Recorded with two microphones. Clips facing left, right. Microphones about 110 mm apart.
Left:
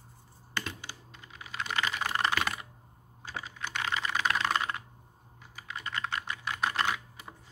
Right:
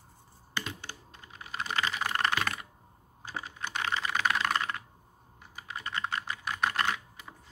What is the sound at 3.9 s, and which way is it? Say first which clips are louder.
Typing: even; 30° right (ahead or behind).